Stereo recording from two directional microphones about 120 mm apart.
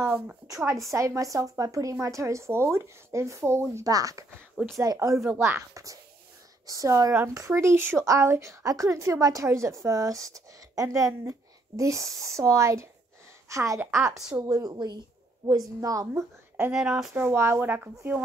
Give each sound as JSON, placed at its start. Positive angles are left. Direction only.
{"t": 0.1, "sound": "speech", "side_deg": -5}
{"t": 0.9, "sound": "speech", "side_deg": -25}
{"t": 5.2, "sound": "a woman's voice", "side_deg": -15}
{"t": 16.7, "sound": "speech", "side_deg": -5}
{"t": 17.1, "sound": "speech", "side_deg": -20}